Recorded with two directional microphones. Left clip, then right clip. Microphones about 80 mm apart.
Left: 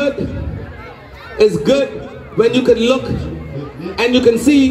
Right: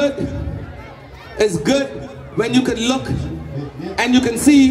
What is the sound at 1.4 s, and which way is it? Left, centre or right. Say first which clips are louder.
A man's voice: left 5 dB; right.